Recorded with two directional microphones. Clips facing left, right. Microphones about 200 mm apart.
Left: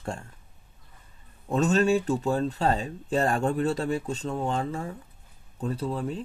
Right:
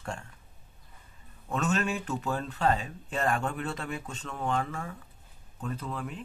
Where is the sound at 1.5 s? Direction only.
35° left (ahead or behind).